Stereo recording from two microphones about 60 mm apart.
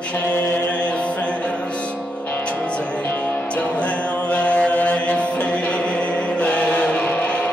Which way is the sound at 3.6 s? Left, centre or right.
Left.